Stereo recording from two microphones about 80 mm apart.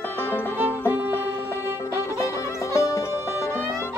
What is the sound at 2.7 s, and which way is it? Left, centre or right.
Music, left.